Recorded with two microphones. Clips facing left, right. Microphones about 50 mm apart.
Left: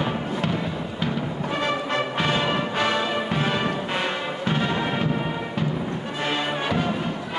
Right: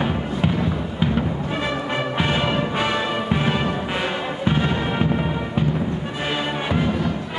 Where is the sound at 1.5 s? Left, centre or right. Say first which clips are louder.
Left 2 dB; centre.